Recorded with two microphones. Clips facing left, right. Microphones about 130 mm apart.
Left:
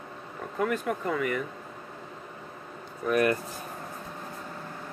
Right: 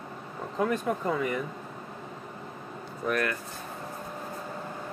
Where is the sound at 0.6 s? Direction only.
25° right (ahead or behind).